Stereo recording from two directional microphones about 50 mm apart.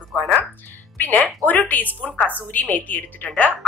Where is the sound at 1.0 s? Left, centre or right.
Left.